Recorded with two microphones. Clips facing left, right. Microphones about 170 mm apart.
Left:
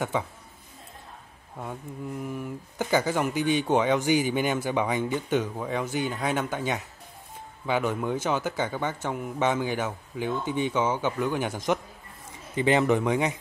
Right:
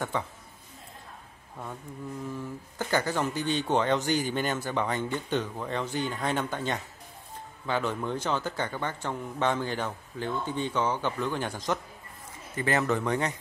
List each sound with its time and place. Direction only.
1.6 s speech: 15° left (ahead or behind)